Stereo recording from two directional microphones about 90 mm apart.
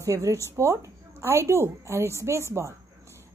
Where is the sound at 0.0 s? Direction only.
35° right (ahead or behind).